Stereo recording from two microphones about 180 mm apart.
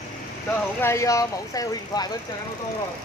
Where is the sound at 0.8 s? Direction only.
15° left (ahead or behind).